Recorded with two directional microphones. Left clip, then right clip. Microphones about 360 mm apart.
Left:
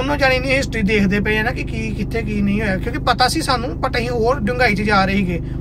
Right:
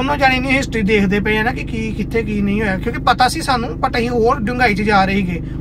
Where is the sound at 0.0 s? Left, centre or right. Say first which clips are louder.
Right 2 dB; centre.